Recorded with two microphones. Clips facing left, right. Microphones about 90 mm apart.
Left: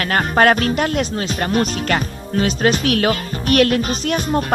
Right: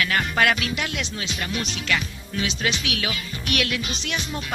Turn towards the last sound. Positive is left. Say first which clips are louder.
# left 11 dB
turn(degrees=45)  # may be behind; listen again after turning